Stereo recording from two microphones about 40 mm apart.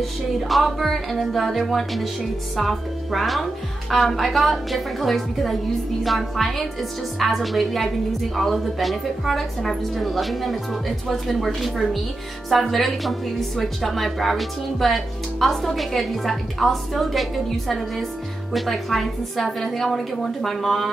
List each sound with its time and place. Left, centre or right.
0.0 s a woman's voice: centre